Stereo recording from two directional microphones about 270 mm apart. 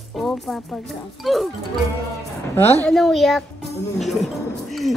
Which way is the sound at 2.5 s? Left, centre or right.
Centre.